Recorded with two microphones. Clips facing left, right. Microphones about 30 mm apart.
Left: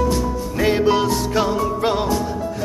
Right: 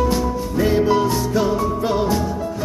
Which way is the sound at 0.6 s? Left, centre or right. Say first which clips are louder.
Even; left.